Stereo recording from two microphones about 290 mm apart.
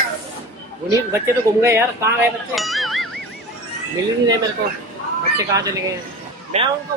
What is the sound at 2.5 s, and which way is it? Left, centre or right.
Music, centre.